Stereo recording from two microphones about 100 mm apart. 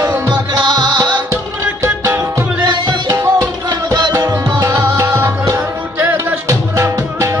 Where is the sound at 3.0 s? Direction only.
30° right (ahead or behind).